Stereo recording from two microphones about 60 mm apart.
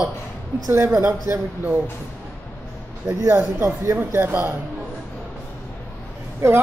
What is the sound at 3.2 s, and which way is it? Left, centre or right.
A man's voice, right.